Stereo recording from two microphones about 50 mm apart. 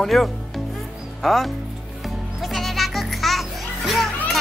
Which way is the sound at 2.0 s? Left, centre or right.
Centre.